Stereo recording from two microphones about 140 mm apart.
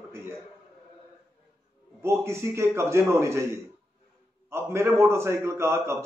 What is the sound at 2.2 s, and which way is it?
A man's voice, 20° right (ahead or behind).